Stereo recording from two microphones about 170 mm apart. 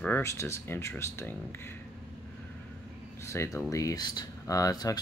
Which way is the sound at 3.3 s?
15° left (ahead or behind).